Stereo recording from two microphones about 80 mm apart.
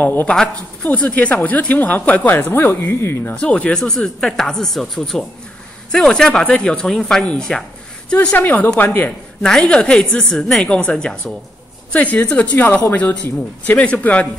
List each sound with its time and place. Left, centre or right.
0.0 s speech: left
3.3 s speech: centre
9.4 s a woman's voice: centre